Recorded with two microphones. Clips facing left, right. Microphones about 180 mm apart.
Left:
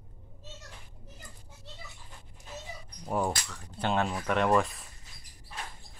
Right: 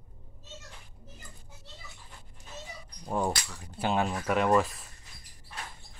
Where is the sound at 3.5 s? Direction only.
10° right (ahead or behind).